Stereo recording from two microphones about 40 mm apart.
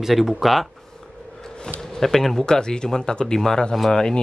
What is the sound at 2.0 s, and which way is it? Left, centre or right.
Speech, centre.